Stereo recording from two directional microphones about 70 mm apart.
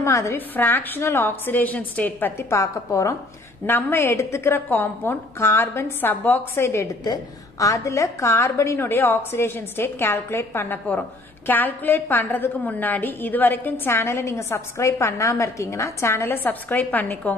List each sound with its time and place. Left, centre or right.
0.0 s a woman's voice: left
0.6 s a woman's voice: left
2.5 s a woman's voice: left
3.6 s a woman's voice: left
7.5 s a woman's voice: left
16.4 s a woman's voice: left